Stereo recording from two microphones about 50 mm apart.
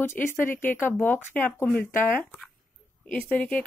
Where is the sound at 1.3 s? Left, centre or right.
Left.